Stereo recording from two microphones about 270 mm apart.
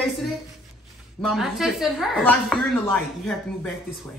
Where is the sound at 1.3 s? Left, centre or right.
Centre.